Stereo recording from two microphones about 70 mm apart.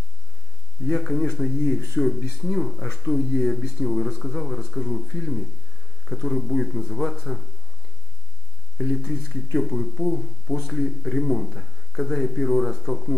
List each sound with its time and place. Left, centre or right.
0.8 s speech: centre
8.7 s speech: centre